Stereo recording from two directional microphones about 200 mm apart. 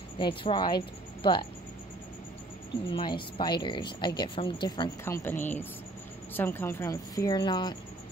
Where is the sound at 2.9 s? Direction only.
25° left (ahead or behind).